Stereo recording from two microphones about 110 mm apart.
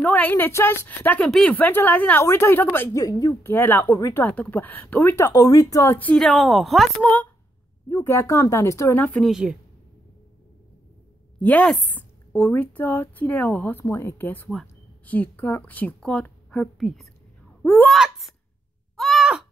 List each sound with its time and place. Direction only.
0.0 s a woman's voice: 15° left (ahead or behind); by 3.5 s 30° left (ahead or behind)
3.5 s a woman's voice: 20° left (ahead or behind)
5.9 s speech: 15° left (ahead or behind)
6.1 s speech: centre (ahead or behind)
7.0 s speech: 15° left (ahead or behind)
7.9 s a woman's voice: 25° left (ahead or behind)
9.2 s speech: 5° right (ahead or behind)
11.3 s a woman's voice: 15° left (ahead or behind)
11.9 s a sound: 15° left (ahead or behind)
12.4 s speech: 15° left (ahead or behind); by 18.3 s centre (ahead or behind)
18.9 s groan: 5° left (ahead or behind)